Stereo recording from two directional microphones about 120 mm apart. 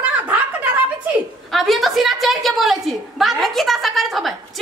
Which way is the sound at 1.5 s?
Centre (ahead or behind).